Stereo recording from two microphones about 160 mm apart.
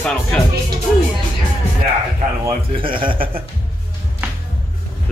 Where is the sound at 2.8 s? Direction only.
30° right (ahead or behind).